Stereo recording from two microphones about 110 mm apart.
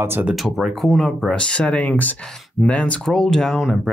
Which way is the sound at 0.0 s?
20° right (ahead or behind).